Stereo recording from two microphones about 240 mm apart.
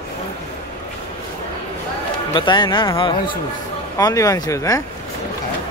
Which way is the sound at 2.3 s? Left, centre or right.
Centre.